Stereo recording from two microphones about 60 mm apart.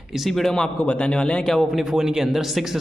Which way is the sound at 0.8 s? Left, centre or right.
Centre.